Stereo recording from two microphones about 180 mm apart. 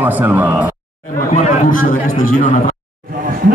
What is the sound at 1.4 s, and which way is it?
A man's voice, 50° left (ahead or behind).